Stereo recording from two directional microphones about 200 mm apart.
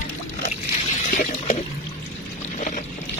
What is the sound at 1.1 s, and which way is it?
Water, 35° left (ahead or behind).